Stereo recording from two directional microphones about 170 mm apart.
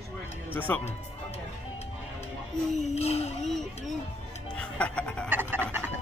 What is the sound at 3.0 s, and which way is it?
Speech, 40° left (ahead or behind).